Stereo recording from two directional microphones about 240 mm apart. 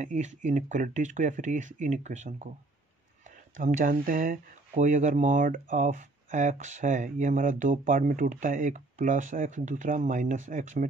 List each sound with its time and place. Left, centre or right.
0.0 s speech: right
3.5 s speech: right